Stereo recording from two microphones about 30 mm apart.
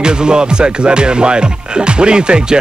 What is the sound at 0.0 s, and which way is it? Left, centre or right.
Speech, right.